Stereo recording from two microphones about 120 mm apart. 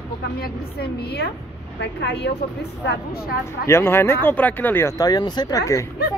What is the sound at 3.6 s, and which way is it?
Speech, 20° left (ahead or behind).